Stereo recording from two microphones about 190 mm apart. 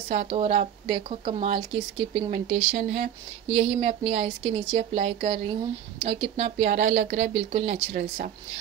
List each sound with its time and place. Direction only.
0.1 s speech: 30° right (ahead or behind)